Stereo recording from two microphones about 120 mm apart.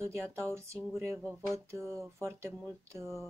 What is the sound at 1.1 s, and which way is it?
Speech, 10° right (ahead or behind).